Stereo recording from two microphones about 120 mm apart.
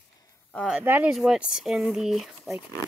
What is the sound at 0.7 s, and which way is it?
Speech, 10° right (ahead or behind).